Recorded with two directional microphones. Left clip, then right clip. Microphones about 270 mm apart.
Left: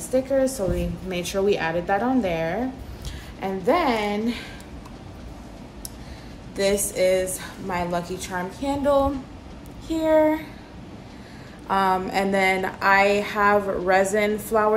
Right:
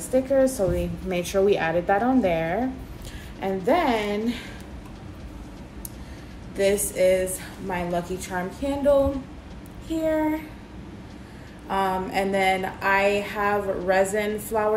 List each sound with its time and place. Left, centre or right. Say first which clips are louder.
0.1 s a woman's voice: right 1 dB; centre
6.5 s speech: even; centre
11.7 s speech: left 3 dB; centre